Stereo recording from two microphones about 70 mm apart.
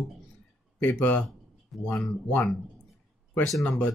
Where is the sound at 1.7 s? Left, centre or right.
Centre.